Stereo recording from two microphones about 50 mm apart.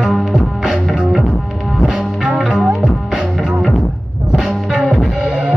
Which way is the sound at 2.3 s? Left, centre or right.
Centre.